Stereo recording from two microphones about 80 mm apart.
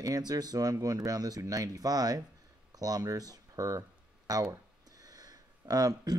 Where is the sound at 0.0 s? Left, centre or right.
Right.